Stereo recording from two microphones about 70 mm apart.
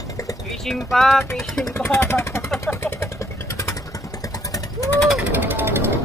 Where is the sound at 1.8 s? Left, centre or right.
Left.